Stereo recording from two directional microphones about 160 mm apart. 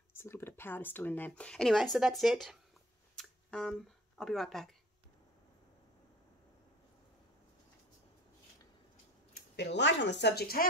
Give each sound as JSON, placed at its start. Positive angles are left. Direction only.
{"t": 0.1, "sound": "speech", "side_deg": 15}
{"t": 3.2, "sound": "a sound", "side_deg": 5}
{"t": 4.2, "sound": "speech", "side_deg": 0}
{"t": 9.3, "sound": "speech", "side_deg": 90}